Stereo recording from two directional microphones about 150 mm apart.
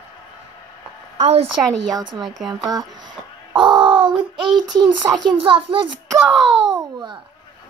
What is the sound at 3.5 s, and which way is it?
Child singing, 30° right (ahead or behind).